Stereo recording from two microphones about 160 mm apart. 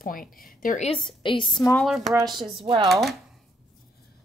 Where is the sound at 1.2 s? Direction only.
30° left (ahead or behind).